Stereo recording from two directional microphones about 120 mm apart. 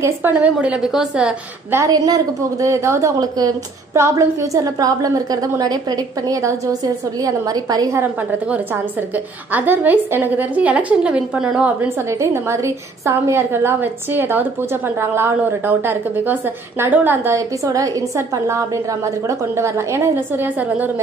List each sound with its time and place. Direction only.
0.0 s a woman's voice: 15° right (ahead or behind)
1.9 s a woman's voice: 30° right (ahead or behind)
9.1 s a woman's voice: 15° right (ahead or behind)
12.1 s a woman's voice: 25° right (ahead or behind)